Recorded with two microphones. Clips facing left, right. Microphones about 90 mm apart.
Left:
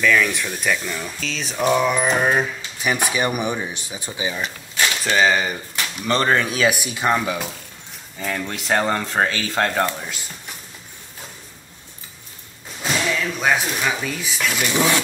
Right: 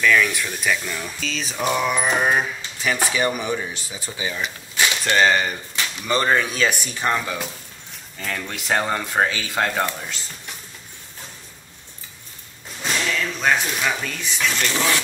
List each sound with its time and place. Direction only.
0.0 s speech: centre (ahead or behind)
2.8 s speech: 15° left (ahead or behind)
5.0 s speech: 5° left (ahead or behind)
12.8 s speech: 5° left (ahead or behind)